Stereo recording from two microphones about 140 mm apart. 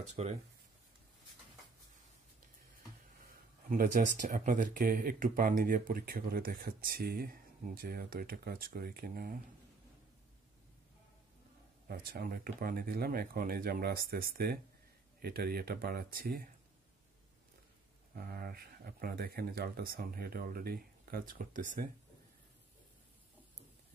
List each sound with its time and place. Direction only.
0.1 s speech: 50° right (ahead or behind)
3.6 s speech: 75° right (ahead or behind)
11.9 s speech: 90° right
18.1 s speech: 90° right; by 21.8 s 70° right (ahead or behind)